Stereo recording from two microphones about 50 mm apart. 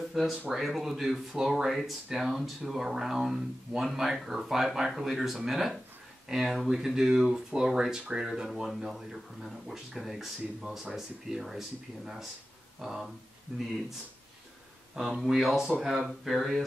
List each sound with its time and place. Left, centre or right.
0.1 s speech: centre
1.7 s speech: centre
12.8 s speech: centre
15.0 s speech: centre